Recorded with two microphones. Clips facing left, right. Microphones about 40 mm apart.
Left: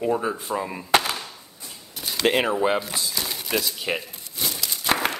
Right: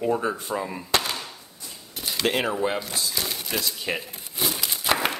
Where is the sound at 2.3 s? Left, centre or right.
Centre.